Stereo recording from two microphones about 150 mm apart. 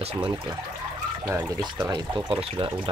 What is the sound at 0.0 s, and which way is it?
Speech, 40° right (ahead or behind).